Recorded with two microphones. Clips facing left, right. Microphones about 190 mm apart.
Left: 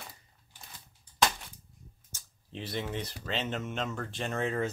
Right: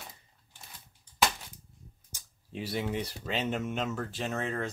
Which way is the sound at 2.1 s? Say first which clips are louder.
Right 2 dB; 10° right (ahead or behind).